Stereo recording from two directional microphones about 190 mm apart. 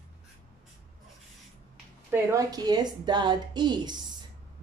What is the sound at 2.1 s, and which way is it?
A woman's voice, 15° right (ahead or behind).